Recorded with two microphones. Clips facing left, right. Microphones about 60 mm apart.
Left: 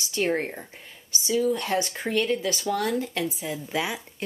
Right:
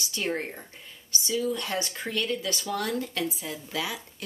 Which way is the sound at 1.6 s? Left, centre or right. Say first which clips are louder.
Left 5 dB; left.